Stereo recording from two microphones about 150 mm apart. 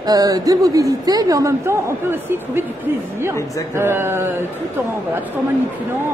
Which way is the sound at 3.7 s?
15° right (ahead or behind).